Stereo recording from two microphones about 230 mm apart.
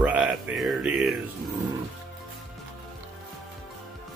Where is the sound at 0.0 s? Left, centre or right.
Centre.